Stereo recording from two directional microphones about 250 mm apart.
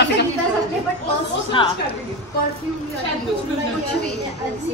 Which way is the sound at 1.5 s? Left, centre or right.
Left.